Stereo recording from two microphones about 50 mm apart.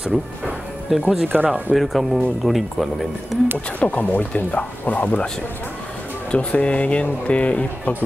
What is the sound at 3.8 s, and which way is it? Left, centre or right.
Speech, left.